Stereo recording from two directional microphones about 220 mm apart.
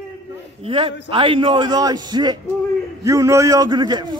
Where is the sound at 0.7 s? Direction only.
25° right (ahead or behind).